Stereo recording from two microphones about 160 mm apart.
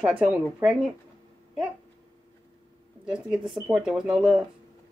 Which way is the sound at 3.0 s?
5° right (ahead or behind).